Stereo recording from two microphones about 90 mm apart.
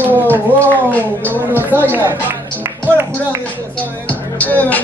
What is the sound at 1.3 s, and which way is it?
Speech, 20° right (ahead or behind).